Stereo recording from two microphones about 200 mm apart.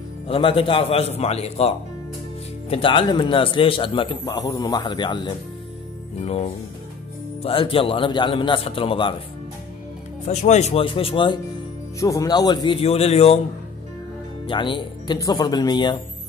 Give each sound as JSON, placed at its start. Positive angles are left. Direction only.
{"t": 0.3, "sound": "a man's voice", "side_deg": 25}
{"t": 10.2, "sound": "speech", "side_deg": 35}
{"t": 12.0, "sound": "a man's voice", "side_deg": 15}
{"t": 14.5, "sound": "a man's voice", "side_deg": 25}